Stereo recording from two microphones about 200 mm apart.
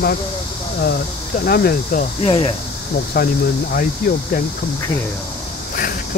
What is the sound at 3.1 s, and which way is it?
Speech, 50° left (ahead or behind).